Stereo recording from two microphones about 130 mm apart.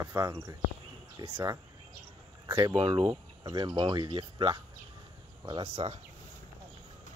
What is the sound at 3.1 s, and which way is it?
Speech, 35° right (ahead or behind).